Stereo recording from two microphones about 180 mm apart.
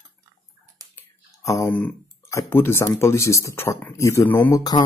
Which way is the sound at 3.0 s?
15° left (ahead or behind).